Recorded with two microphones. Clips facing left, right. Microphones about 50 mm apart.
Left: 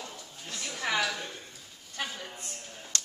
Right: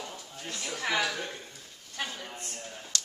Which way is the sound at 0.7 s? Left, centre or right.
Centre.